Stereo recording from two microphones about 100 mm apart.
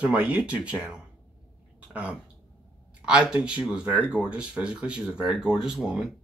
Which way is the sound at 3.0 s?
10° right (ahead or behind).